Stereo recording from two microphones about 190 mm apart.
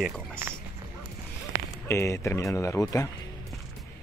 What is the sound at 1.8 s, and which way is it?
Speech, 15° left (ahead or behind).